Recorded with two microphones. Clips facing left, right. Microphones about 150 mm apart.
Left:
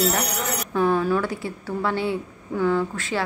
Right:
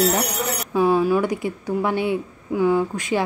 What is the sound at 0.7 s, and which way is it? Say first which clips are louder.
A woman's voice: right 3 dB; 10° right (ahead or behind).